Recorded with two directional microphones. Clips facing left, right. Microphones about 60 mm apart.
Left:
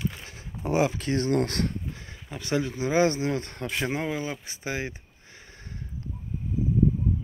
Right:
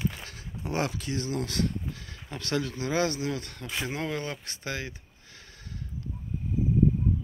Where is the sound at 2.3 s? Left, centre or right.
Centre.